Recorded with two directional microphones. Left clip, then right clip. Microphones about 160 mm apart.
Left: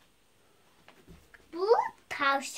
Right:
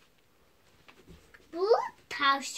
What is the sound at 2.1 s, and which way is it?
Speech, 30° left (ahead or behind).